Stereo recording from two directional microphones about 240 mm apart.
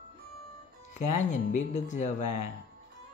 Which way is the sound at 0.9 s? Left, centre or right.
Left.